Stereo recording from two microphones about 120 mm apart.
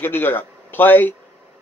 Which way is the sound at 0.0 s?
15° left (ahead or behind).